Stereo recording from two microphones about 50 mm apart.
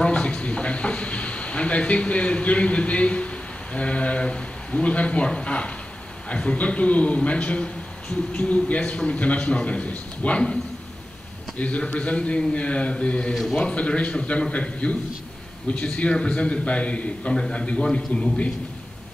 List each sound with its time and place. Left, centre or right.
0.0 s a sound: left
3.7 s a man's voice: left
13.3 s a man's voice: centre
13.6 s a man's voice: left